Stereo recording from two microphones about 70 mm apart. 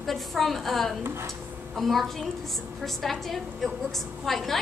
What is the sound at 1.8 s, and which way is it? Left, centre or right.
A woman's voice, centre.